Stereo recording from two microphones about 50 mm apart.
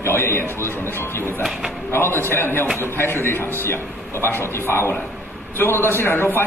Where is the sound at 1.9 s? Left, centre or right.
Left.